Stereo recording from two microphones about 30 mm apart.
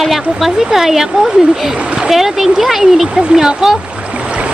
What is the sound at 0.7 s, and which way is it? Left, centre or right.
Speech, centre.